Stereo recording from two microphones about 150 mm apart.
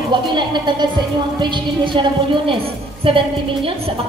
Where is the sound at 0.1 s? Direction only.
30° right (ahead or behind).